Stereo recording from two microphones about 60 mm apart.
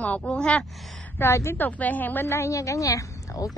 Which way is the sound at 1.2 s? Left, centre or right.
Left.